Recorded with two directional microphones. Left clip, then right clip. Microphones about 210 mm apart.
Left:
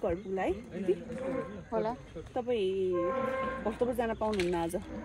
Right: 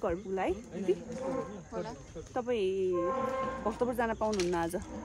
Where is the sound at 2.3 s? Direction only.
5° right (ahead or behind).